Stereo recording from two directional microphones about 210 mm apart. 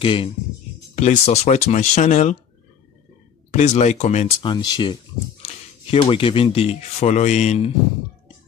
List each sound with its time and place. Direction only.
0.0 s speech: 25° left (ahead or behind)
3.5 s speech: 35° left (ahead or behind)